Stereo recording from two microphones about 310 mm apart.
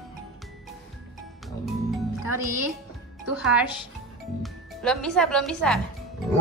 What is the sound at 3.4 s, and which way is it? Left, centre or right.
Speech, centre.